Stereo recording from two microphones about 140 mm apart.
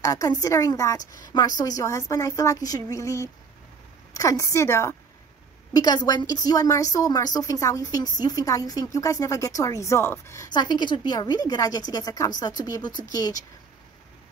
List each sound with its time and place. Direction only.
0.0 s speech: 25° left (ahead or behind)